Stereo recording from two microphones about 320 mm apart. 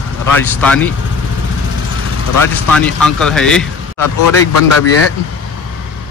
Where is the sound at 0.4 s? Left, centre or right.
Centre.